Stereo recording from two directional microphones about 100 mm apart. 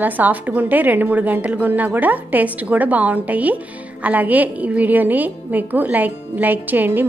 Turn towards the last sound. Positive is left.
turn(degrees=-20)  # may be behind; listen again after turning